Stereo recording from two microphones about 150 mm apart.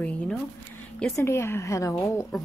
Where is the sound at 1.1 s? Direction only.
20° left (ahead or behind).